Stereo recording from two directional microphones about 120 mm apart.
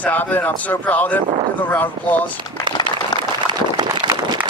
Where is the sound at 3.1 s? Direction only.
35° left (ahead or behind).